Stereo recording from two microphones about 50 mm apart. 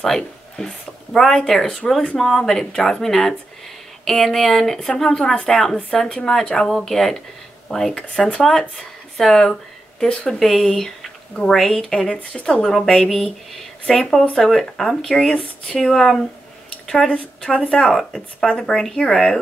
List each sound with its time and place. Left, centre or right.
0.0 s speech: centre
12.1 s speech: left
12.6 s speech: centre